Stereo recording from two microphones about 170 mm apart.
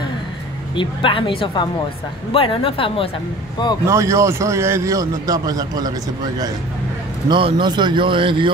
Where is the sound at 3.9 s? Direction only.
15° right (ahead or behind).